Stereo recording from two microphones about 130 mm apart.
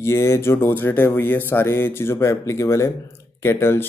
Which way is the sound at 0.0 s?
20° left (ahead or behind).